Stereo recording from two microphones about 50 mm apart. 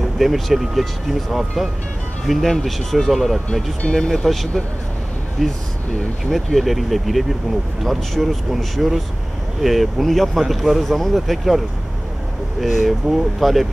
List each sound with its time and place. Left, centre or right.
0.0 s speech: centre